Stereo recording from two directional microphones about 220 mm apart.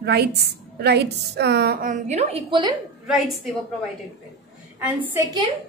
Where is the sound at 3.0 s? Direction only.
5° right (ahead or behind).